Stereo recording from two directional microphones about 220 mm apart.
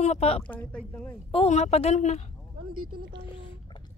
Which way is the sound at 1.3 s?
30° left (ahead or behind).